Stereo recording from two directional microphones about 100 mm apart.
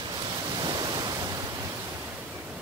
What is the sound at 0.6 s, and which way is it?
Waterfall, 45° right (ahead or behind).